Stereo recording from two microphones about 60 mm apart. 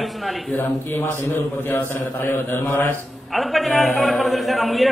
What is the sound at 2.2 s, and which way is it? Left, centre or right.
Mantra, left.